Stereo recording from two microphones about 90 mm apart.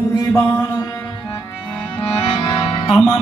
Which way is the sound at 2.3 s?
60° left (ahead or behind).